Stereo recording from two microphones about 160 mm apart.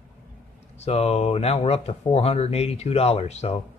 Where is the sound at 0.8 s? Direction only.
40° left (ahead or behind).